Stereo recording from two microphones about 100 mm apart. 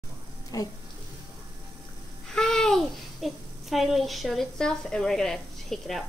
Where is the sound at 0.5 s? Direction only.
35° left (ahead or behind).